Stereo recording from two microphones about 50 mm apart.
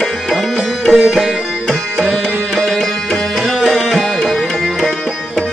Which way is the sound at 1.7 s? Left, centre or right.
Centre.